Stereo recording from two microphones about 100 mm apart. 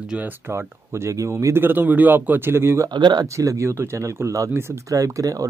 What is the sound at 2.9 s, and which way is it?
Speech, 45° right (ahead or behind).